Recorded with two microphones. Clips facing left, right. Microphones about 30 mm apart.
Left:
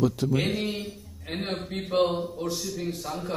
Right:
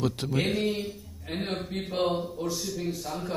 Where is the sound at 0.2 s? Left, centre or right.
Right.